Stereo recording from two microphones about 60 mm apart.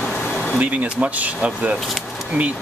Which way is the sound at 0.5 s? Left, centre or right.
Right.